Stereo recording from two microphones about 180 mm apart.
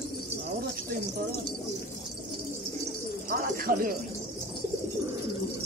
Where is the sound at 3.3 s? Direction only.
55° right (ahead or behind).